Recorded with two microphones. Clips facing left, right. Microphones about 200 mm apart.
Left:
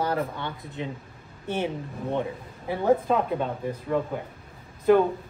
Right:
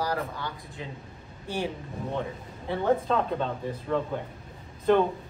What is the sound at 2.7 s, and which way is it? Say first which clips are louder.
A woman's voice: left 3 dB; 10° left (ahead or behind).